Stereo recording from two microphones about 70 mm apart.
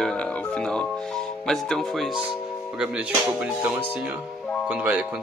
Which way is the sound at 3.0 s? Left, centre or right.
Right.